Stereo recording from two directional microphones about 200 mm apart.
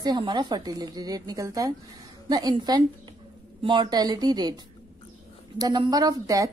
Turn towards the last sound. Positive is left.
turn(degrees=-15)  # may be behind; listen again after turning